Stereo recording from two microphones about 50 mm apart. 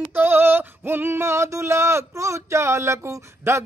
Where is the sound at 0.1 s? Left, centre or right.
Right.